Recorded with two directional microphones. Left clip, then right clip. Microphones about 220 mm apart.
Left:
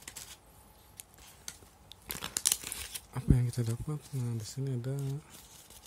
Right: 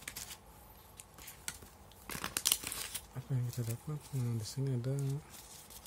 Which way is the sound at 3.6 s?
30° left (ahead or behind).